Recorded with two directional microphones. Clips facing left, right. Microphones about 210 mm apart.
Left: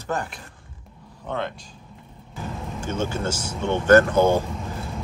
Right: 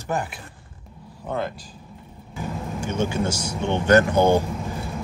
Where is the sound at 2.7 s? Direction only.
15° right (ahead or behind).